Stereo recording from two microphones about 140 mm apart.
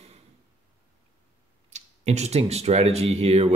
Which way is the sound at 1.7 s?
50° right (ahead or behind).